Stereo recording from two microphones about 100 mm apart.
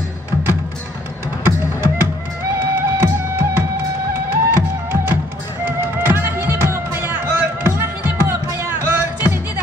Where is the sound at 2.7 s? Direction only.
25° right (ahead or behind).